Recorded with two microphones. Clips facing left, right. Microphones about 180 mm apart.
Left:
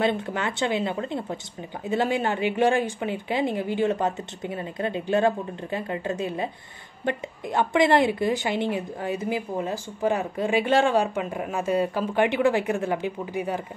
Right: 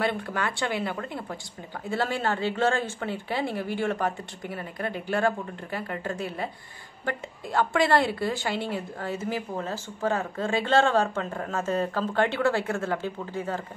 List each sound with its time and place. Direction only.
0.0 s a woman's voice: 20° left (ahead or behind)